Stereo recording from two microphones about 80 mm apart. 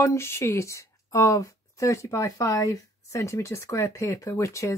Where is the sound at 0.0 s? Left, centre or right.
Left.